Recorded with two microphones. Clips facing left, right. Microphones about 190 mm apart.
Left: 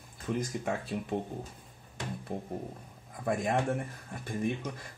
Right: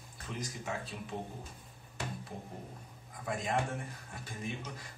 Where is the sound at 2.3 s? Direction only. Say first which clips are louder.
Left 8 dB; 50° left (ahead or behind).